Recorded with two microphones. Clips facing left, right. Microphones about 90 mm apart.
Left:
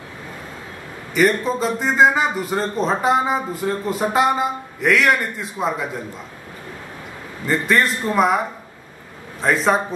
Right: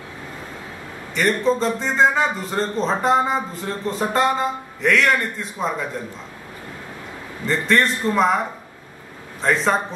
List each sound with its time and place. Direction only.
1.1 s a man's voice: 5° left (ahead or behind)
7.4 s a man's voice: 5° left (ahead or behind)
9.4 s a man's voice: 5° left (ahead or behind)